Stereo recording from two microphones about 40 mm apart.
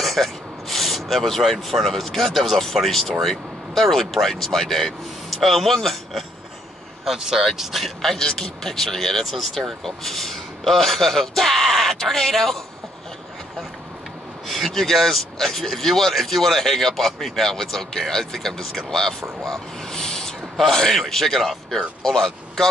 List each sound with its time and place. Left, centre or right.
0.0 s speech: centre
7.2 s speech: centre
14.5 s speech: centre
20.5 s a man's voice: centre